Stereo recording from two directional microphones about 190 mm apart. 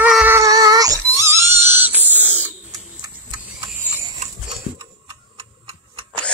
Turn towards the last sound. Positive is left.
turn(degrees=-25)  # may be behind; listen again after turning